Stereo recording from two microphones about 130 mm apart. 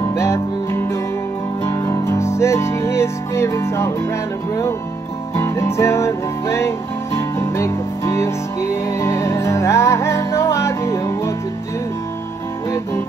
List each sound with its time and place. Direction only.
0.0 s music: 20° left (ahead or behind)
5.3 s music: 20° left (ahead or behind)